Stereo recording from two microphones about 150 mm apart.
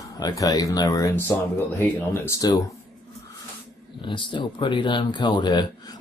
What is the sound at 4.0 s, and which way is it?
Speech, 35° left (ahead or behind).